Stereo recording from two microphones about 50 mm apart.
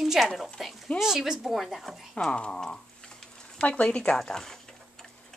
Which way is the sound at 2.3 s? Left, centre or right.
Centre.